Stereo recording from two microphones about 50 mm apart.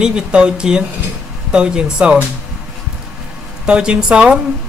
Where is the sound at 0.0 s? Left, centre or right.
Centre.